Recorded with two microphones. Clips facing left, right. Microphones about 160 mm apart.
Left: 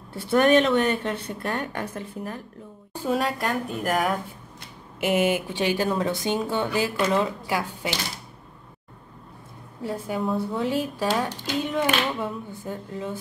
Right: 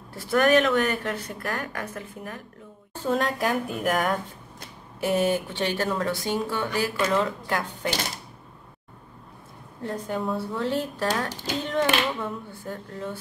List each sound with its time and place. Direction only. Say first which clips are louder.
0.1 s a woman's voice: left 2 dB; 25° left (ahead or behind)
2.9 s a woman's voice: even; 10° left (ahead or behind)
5.0 s speech: left 1 dB; 15° left (ahead or behind)
9.8 s a woman's voice: left 1 dB; 5° left (ahead or behind)